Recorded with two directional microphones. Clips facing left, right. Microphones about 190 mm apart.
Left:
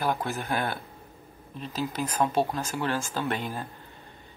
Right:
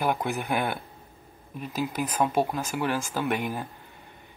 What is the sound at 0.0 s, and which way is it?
Speech, 15° right (ahead or behind).